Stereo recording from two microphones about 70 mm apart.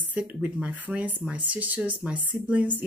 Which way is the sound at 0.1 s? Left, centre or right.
Right.